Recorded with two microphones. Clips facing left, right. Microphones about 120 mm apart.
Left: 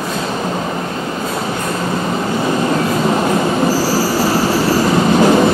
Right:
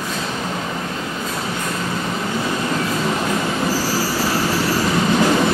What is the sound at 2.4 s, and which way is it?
Train, 30° left (ahead or behind).